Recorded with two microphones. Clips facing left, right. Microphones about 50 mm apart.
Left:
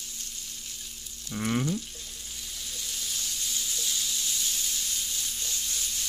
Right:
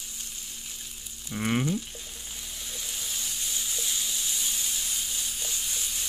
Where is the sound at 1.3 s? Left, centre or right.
Right.